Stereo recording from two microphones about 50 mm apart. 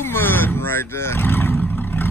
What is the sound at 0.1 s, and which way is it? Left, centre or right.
Vehicle, left.